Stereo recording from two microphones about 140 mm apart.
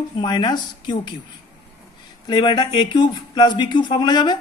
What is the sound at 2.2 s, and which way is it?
Speech, 30° left (ahead or behind).